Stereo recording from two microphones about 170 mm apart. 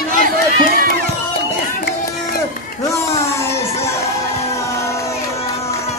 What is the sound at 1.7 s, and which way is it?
Run, 55° left (ahead or behind).